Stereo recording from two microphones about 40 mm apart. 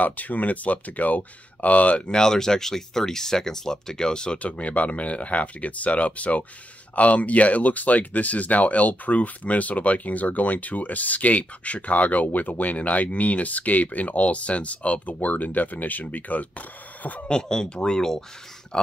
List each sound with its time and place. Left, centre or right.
0.0 s speech: left
2.0 s speech: centre
4.4 s speech: left
15.1 s speech: left
17.3 s speech: centre